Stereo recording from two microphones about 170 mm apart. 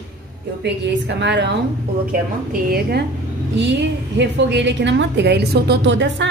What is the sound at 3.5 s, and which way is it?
A woman's voice, 90° right.